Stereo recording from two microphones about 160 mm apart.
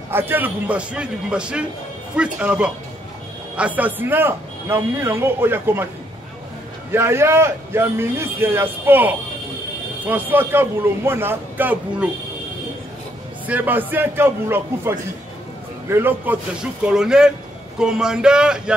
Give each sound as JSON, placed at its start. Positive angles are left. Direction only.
{"t": 0.1, "sound": "a man's voice", "side_deg": -15}
{"t": 6.9, "sound": "a man's voice", "side_deg": -15}
{"t": 13.5, "sound": "a man's voice", "side_deg": -10}